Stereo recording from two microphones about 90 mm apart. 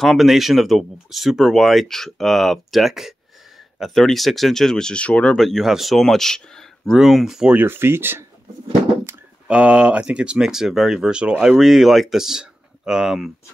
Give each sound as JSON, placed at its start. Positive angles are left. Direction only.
{"t": 0.0, "sound": "speech", "side_deg": 0}
{"t": 5.4, "sound": "speech", "side_deg": 0}
{"t": 7.5, "sound": "speech", "side_deg": -25}
{"t": 9.5, "sound": "speech", "side_deg": -15}